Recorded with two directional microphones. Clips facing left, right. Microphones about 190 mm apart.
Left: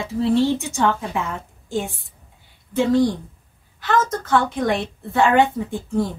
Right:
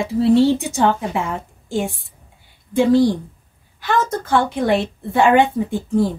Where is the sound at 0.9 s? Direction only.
15° right (ahead or behind).